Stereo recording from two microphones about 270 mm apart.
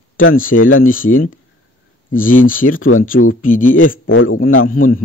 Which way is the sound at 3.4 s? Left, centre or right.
Left.